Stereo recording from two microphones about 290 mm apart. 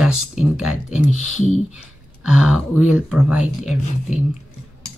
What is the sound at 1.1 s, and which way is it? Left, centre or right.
Speech, left.